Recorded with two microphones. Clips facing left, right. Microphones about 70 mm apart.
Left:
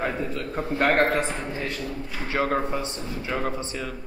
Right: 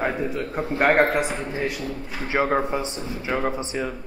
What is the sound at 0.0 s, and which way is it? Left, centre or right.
A man's voice, centre.